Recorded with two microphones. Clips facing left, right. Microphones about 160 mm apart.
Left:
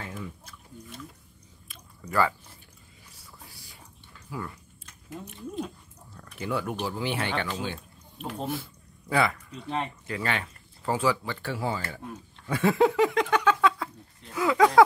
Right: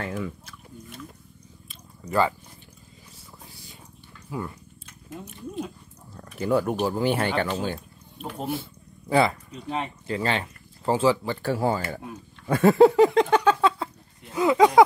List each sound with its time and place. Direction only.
0.0 s a sound: 75° right (ahead or behind)
1.7 s drip: 25° right (ahead or behind)
4.3 s speech: 25° right (ahead or behind)
5.1 s speech: centre (ahead or behind)
6.4 s speech: 40° right (ahead or behind)
9.5 s speech: 5° right (ahead or behind)
10.0 s speech: 30° right (ahead or behind)
11.4 s speech: 45° right (ahead or behind)
12.4 s a sound: 45° right (ahead or behind)
14.3 s speech: 20° right (ahead or behind)